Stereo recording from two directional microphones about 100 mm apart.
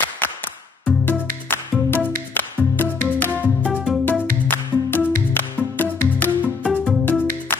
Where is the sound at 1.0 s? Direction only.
20° left (ahead or behind).